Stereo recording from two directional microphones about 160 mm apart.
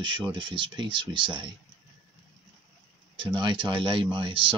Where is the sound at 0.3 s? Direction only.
30° right (ahead or behind).